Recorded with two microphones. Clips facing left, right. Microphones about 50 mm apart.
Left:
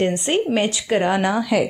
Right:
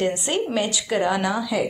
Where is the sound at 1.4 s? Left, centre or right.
Left.